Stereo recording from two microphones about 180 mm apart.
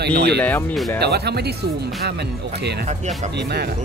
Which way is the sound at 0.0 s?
65° right (ahead or behind).